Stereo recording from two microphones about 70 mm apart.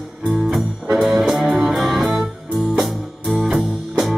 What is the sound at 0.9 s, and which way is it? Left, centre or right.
Music, centre.